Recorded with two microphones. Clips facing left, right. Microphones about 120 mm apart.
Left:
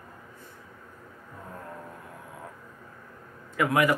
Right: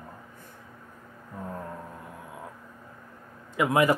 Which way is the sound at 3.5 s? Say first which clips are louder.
Right 1 dB; 25° right (ahead or behind).